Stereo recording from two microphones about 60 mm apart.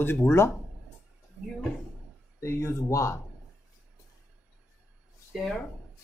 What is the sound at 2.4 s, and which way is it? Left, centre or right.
Speech, left.